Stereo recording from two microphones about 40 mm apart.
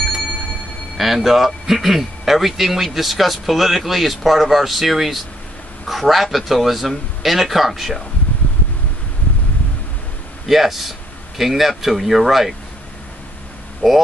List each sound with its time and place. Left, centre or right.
0.9 s speech: centre
8.3 s a sound: left
10.5 s speech: centre
13.8 s speech: centre